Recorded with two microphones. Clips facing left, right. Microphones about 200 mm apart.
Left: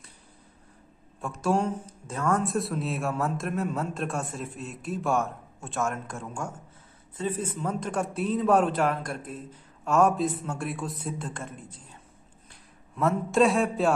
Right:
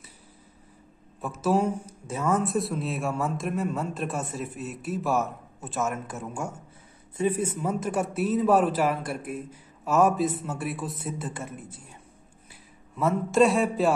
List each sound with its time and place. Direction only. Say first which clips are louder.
1.2 s speech: right 2 dB; 5° right (ahead or behind)